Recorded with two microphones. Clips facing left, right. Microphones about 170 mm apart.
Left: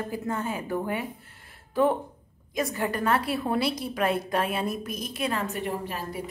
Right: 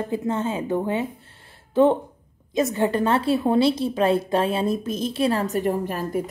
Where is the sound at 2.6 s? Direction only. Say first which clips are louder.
Right 7 dB; 25° right (ahead or behind).